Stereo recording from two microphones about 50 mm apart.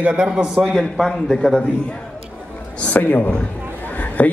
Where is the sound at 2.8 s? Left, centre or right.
Left.